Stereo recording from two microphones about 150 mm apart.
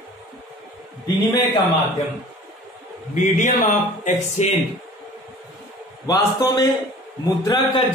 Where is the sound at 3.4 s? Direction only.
55° left (ahead or behind).